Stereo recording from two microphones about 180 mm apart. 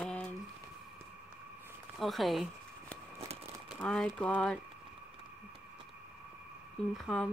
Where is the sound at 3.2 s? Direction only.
35° right (ahead or behind).